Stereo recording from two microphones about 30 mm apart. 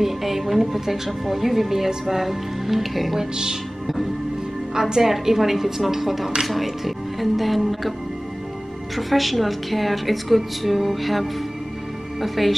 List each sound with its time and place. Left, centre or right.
0.0 s a woman's voice: centre
3.2 s speech: right
5.0 s a woman's voice: centre
8.9 s a woman's voice: centre